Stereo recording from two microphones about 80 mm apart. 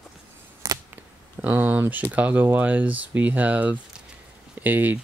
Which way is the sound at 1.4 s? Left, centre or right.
Right.